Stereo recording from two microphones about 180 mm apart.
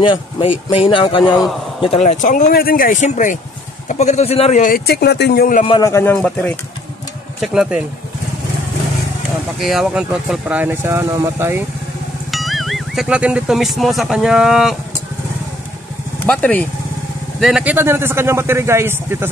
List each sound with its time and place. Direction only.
0.0 s speech: 30° left (ahead or behind)
4.6 s speech: 50° left (ahead or behind)
5.7 s a man's voice: 20° left (ahead or behind); by 7.8 s centre (ahead or behind)
9.6 s speech: centre (ahead or behind)
12.3 s speech: centre (ahead or behind)
16.3 s a man's voice: 10° left (ahead or behind)
17.4 s speech: 5° right (ahead or behind)